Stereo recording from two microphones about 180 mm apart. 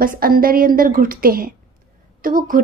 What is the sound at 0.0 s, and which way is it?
A woman's voice, 50° right (ahead or behind).